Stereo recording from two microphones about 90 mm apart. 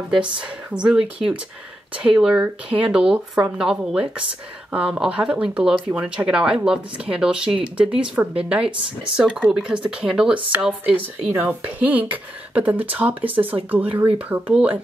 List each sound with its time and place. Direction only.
0.1 s speech: 10° right (ahead or behind)